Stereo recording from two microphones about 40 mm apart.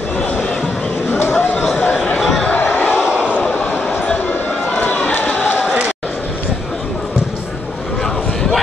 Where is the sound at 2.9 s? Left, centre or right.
Right.